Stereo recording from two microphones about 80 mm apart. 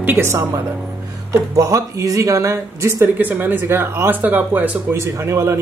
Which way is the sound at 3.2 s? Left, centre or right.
Right.